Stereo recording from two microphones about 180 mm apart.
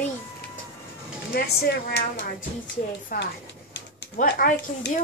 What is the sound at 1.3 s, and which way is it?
Speech, 60° left (ahead or behind).